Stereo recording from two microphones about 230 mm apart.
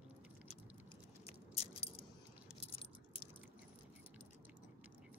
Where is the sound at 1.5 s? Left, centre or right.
Left.